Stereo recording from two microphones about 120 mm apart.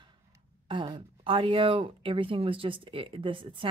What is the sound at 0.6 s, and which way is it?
Speech, 40° right (ahead or behind).